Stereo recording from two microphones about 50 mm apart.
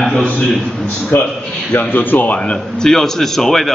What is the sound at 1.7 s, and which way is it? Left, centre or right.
Speech, left.